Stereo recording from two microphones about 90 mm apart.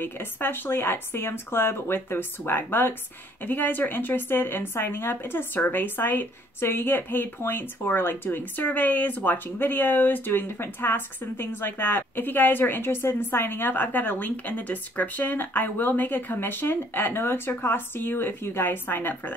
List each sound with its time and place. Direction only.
0.0 s speech: 25° left (ahead or behind)